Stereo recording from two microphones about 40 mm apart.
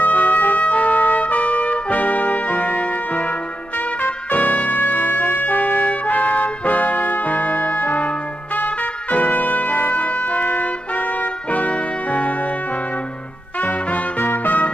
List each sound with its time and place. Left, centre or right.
0.0 s trumpet: left
4.5 s trumpet: left
13.6 s music: left